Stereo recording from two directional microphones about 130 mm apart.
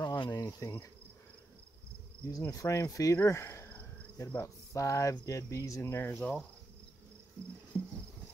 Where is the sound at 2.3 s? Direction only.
25° left (ahead or behind).